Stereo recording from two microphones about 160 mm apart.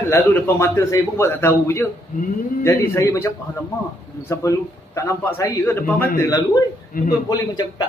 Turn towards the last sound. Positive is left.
turn(degrees=25)  # may be behind; listen again after turning